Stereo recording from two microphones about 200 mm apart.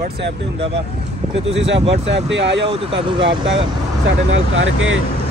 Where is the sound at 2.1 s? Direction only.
60° right (ahead or behind).